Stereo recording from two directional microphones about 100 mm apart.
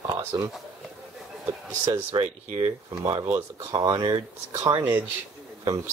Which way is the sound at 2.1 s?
65° right (ahead or behind).